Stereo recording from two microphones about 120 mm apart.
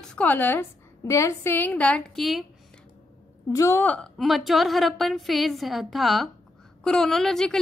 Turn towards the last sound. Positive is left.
turn(degrees=5)  # may be behind; listen again after turning